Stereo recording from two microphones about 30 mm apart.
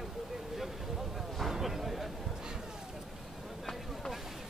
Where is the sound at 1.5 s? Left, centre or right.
Centre.